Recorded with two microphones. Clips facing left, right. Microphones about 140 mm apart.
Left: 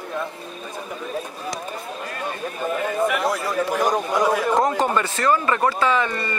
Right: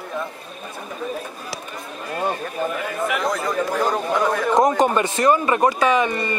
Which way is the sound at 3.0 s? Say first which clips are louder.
Right 2 dB; 5° left (ahead or behind).